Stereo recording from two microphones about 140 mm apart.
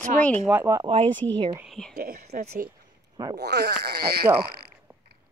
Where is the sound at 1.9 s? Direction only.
90° right.